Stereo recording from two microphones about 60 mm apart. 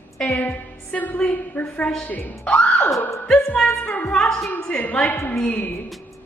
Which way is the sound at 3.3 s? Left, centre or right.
Centre.